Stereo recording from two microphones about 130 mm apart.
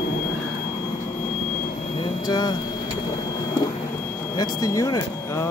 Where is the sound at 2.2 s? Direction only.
30° left (ahead or behind).